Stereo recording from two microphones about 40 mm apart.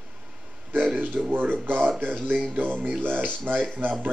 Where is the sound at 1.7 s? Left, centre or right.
Right.